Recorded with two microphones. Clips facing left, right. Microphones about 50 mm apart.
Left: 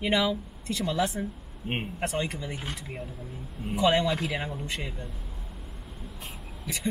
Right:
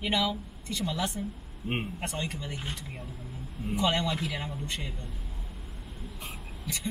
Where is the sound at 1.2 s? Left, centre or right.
Centre.